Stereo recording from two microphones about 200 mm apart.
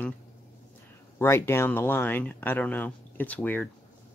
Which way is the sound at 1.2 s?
10° left (ahead or behind).